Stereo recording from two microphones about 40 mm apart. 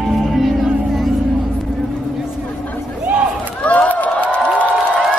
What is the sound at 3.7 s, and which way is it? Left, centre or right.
Run, left.